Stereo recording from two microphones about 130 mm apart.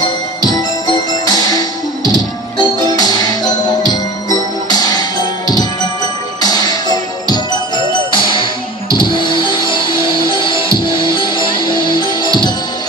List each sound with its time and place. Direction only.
0.0 s music: 30° left (ahead or behind)
6.4 s music: 30° left (ahead or behind)